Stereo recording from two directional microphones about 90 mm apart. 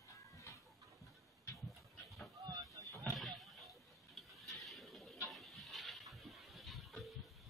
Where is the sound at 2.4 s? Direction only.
45° right (ahead or behind).